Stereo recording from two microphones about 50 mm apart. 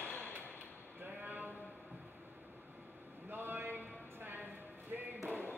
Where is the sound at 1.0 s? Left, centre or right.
Right.